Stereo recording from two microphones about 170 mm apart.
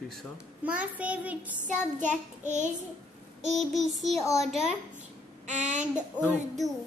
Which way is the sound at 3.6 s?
Centre (ahead or behind).